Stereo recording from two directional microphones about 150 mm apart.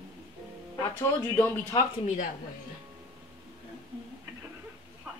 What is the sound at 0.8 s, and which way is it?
Speech, 15° left (ahead or behind).